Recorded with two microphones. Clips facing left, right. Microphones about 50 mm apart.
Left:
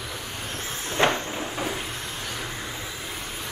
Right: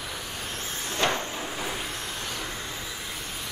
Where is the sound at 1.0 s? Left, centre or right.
Left.